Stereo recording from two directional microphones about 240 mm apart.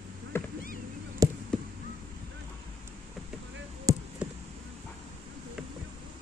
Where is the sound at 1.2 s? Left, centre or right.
Centre.